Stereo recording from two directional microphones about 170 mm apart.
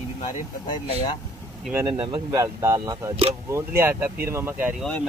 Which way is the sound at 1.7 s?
15° right (ahead or behind).